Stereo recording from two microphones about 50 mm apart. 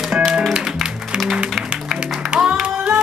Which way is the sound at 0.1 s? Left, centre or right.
Centre.